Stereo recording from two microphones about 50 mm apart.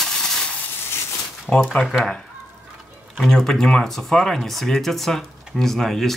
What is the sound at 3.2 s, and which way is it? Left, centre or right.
Speech, centre.